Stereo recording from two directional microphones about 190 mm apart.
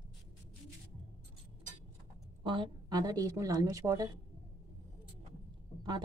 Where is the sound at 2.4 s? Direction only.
25° right (ahead or behind).